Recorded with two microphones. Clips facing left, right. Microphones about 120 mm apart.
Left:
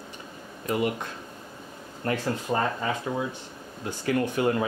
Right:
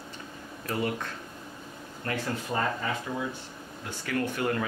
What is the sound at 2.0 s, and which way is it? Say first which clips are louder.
Speech: left 5 dB; 30° left (ahead or behind).